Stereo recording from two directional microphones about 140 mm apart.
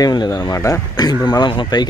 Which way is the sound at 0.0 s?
30° left (ahead or behind).